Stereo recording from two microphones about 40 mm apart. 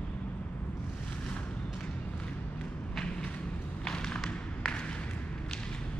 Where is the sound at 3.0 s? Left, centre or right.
Centre.